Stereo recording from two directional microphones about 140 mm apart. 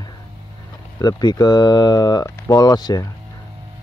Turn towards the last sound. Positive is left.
turn(degrees=30)  # may be behind; listen again after turning